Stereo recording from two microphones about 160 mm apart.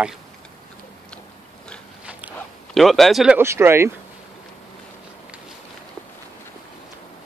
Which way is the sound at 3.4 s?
15° right (ahead or behind).